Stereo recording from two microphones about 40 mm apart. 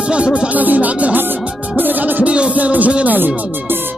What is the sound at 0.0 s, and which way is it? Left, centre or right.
Speech, right.